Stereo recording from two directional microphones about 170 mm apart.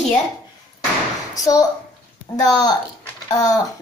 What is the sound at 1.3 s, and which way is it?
A woman's voice, 20° left (ahead or behind).